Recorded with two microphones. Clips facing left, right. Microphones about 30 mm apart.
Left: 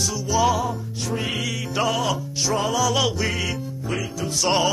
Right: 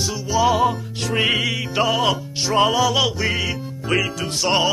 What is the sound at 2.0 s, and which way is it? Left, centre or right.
Music, right.